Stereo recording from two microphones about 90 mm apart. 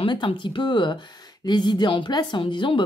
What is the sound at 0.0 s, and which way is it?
Speech, 65° left (ahead or behind).